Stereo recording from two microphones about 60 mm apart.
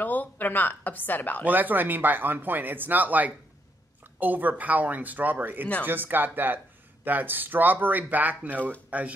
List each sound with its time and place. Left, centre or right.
0.0 s speech: left
1.4 s speech: right